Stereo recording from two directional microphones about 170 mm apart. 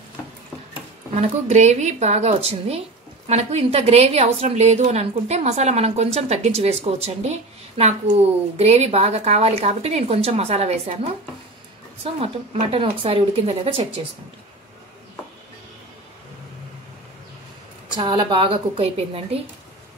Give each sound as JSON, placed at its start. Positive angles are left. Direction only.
{"t": 1.1, "sound": "a woman's voice", "side_deg": -40}
{"t": 12.2, "sound": "a woman's voice", "side_deg": -35}
{"t": 17.9, "sound": "a woman's voice", "side_deg": -25}